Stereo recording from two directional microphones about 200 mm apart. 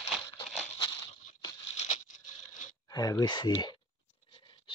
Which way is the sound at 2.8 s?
20° left (ahead or behind).